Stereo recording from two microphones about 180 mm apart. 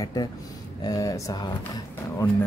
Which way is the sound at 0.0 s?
20° left (ahead or behind).